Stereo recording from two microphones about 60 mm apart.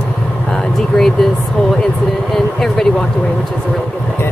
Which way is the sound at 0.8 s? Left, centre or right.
Centre.